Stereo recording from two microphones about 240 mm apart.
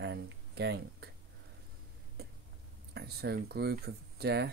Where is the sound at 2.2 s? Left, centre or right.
Right.